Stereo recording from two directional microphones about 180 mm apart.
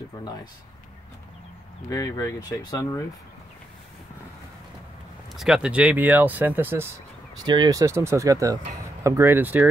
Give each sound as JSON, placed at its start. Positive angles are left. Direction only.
{"t": 1.9, "sound": "speech", "side_deg": 20}
{"t": 5.3, "sound": "speech", "side_deg": 0}
{"t": 7.4, "sound": "speech", "side_deg": -25}